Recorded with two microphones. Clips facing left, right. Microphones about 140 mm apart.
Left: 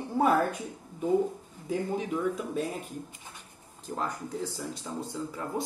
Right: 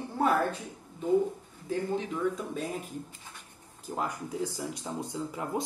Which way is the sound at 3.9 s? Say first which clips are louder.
Right 1 dB; 10° right (ahead or behind).